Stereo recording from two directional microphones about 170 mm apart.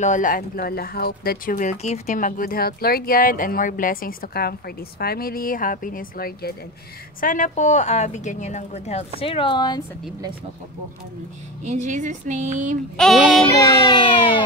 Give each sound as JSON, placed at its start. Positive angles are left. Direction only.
{"t": 0.0, "sound": "a woman's voice", "side_deg": 50}
{"t": 11.6, "sound": "speech", "side_deg": -45}
{"t": 12.9, "sound": "child singing", "side_deg": 0}
{"t": 13.6, "sound": "speech", "side_deg": 20}